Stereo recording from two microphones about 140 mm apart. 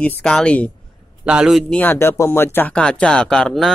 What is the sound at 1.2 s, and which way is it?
Speech, 5° right (ahead or behind).